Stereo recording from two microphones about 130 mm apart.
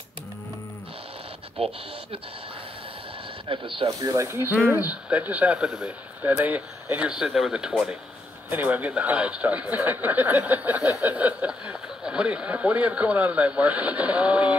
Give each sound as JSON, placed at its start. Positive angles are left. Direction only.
{"t": 1.6, "sound": "speech", "side_deg": -50}
{"t": 3.4, "sound": "speech", "side_deg": -45}
{"t": 4.0, "sound": "speech", "side_deg": -25}